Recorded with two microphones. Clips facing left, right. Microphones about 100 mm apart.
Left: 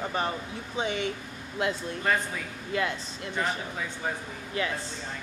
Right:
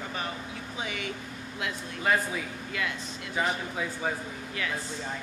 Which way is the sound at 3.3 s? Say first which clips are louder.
Right 1 dB; 5° right (ahead or behind).